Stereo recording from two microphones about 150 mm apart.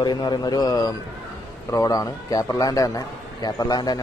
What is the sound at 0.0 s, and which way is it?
A man's voice, 30° left (ahead or behind).